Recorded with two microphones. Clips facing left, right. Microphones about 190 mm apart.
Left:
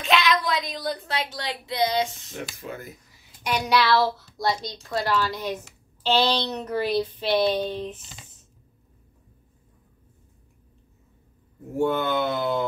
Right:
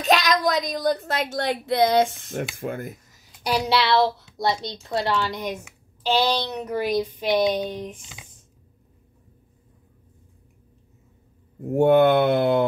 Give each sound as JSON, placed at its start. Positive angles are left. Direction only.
{"t": 0.0, "sound": "speech", "side_deg": -40}
{"t": 11.7, "sound": "mantra", "side_deg": -60}